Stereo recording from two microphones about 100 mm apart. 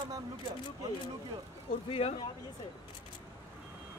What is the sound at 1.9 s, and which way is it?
Speech, 90° left.